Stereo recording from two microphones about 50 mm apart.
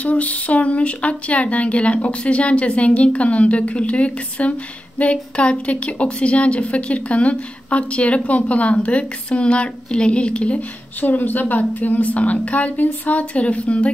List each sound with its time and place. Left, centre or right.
0.0 s speech: left
11.0 s a woman's voice: left
13.2 s speech: left